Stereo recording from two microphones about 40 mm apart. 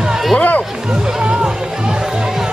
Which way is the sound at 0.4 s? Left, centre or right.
Left.